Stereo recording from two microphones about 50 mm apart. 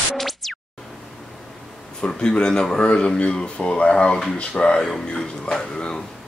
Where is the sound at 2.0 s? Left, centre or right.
Centre.